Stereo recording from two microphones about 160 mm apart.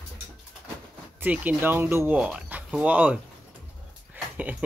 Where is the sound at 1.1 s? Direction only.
10° right (ahead or behind).